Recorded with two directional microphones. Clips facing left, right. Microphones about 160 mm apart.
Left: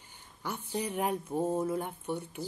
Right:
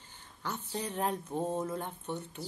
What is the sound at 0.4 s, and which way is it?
Speech, 10° left (ahead or behind).